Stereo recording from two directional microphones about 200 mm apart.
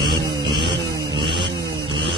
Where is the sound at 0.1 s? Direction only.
25° right (ahead or behind).